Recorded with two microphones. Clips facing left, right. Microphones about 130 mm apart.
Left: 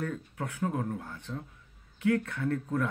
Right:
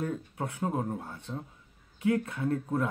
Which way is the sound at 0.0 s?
20° right (ahead or behind).